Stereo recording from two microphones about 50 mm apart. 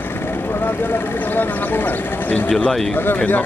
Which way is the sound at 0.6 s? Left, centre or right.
Left.